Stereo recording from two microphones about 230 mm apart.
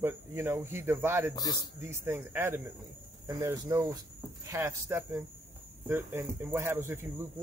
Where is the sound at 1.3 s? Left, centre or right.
Centre.